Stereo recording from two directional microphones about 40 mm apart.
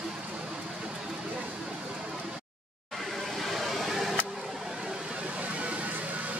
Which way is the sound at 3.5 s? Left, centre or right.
Centre.